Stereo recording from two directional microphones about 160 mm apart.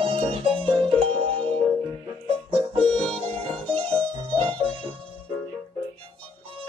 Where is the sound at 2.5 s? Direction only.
35° right (ahead or behind).